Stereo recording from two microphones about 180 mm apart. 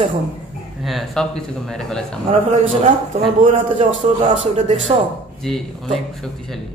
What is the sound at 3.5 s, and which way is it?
A man's voice, 40° right (ahead or behind).